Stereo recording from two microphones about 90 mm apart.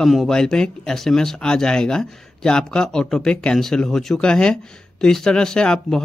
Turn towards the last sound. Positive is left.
turn(degrees=10)  # may be behind; listen again after turning